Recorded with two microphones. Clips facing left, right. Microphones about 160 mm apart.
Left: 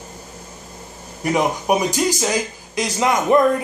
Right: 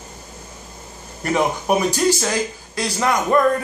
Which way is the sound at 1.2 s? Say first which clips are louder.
Left 1 dB; 15° left (ahead or behind).